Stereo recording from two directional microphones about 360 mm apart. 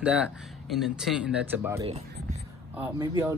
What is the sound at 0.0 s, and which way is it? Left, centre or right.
Speech, centre.